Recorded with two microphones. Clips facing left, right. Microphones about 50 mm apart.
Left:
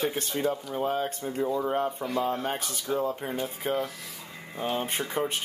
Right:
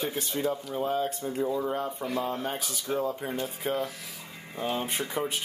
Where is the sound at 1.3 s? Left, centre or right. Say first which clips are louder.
Left 3 dB; centre.